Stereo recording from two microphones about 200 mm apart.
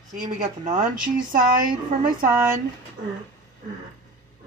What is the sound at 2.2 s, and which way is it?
Speech, 10° right (ahead or behind).